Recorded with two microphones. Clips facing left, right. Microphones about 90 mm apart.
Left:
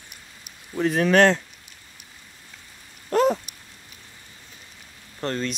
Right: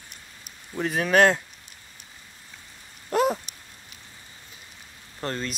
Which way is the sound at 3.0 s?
5° right (ahead or behind).